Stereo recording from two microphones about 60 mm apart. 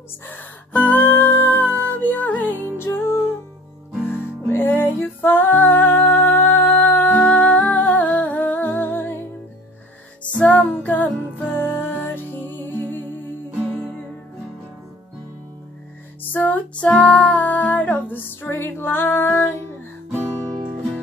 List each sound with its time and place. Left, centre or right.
0.3 s music: left
2.8 s music: left
10.3 s music: left
11.5 s music: left
16.2 s music: left